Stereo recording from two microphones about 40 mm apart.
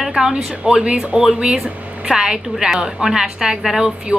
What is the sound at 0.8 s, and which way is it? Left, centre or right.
A woman's voice, right.